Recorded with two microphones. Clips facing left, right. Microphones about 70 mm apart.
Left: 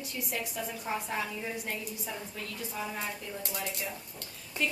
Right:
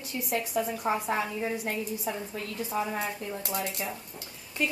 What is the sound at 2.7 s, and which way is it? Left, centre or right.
Speech, right.